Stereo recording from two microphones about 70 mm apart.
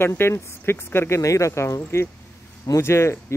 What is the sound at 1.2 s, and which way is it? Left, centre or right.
Speech, left.